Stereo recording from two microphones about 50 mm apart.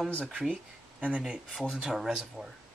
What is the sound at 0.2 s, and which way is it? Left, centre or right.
Speech, right.